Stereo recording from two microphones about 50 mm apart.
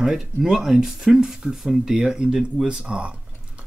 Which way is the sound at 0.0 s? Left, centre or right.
Centre.